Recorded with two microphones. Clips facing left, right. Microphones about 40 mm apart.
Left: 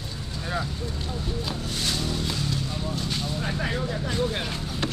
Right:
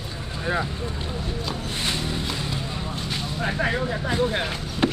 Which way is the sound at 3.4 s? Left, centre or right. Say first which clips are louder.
Right 8 dB; centre.